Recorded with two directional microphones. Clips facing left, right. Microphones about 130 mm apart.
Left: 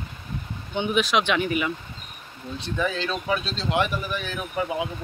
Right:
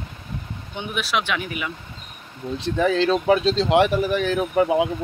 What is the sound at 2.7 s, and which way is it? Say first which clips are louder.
Speech: right 8 dB; 70° right (ahead or behind).